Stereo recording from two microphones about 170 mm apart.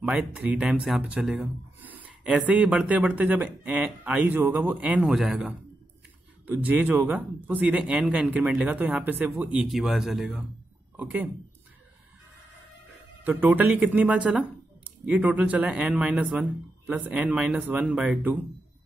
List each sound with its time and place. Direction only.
0.0 s speech: 5° right (ahead or behind)
13.2 s speech: 10° right (ahead or behind)